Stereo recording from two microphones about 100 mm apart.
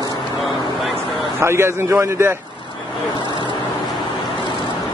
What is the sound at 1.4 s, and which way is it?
Speech, 25° right (ahead or behind).